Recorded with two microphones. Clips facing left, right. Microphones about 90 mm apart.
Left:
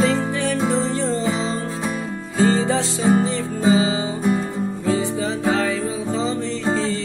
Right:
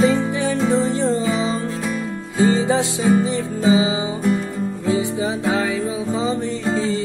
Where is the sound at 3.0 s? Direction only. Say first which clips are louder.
Even; 20° left (ahead or behind).